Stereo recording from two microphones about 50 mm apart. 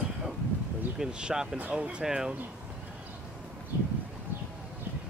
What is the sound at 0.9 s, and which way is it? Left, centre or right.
Speech, centre.